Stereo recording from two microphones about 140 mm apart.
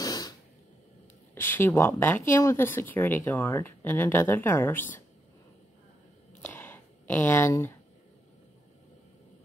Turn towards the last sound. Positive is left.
turn(degrees=20)  # may be behind; listen again after turning